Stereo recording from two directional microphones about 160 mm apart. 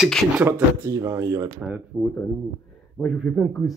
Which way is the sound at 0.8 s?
20° right (ahead or behind).